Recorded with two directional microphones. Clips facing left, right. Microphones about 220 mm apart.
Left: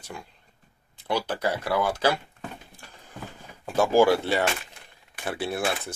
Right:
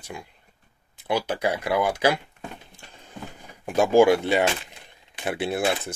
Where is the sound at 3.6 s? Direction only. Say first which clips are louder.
Right 3 dB; 15° right (ahead or behind).